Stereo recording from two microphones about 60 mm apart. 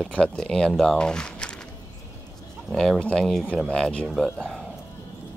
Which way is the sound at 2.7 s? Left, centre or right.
Centre.